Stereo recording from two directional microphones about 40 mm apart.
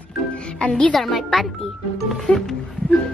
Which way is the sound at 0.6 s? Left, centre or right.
Left.